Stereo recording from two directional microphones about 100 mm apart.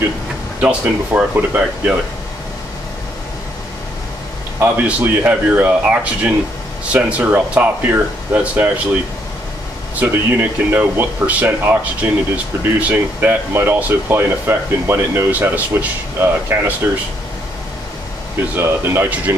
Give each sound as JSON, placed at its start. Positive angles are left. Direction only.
{"t": 0.6, "sound": "speech", "side_deg": -15}
{"t": 4.6, "sound": "speech", "side_deg": -15}
{"t": 9.9, "sound": "speech", "side_deg": -20}
{"t": 18.6, "sound": "speech", "side_deg": -20}